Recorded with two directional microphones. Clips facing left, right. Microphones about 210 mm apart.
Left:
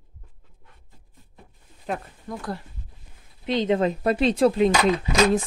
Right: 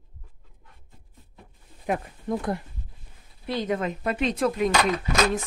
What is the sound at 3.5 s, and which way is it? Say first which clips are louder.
Speech: left 5 dB; 25° left (ahead or behind).